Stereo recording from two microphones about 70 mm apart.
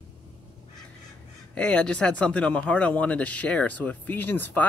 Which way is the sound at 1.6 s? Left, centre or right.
Centre.